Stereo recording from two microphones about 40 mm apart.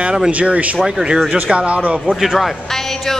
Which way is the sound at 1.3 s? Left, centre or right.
Right.